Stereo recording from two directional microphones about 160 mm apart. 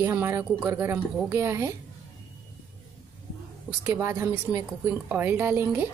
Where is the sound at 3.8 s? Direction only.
15° right (ahead or behind).